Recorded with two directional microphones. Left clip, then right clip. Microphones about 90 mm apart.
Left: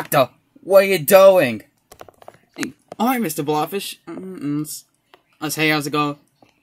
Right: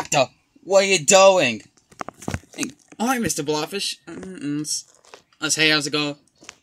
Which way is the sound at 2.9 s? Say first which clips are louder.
Left 2 dB; 30° right (ahead or behind).